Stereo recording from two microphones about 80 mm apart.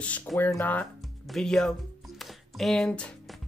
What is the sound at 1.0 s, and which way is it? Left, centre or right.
Music, centre.